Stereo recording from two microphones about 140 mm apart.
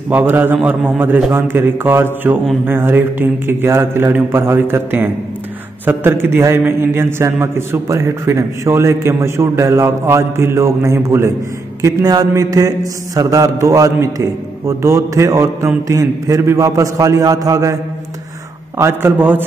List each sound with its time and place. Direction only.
0.1 s speech: 15° right (ahead or behind)
5.9 s mantra: 15° right (ahead or behind)
18.8 s speech: 15° right (ahead or behind)